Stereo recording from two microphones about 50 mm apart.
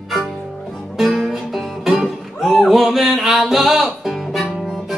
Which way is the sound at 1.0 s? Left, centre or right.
Centre.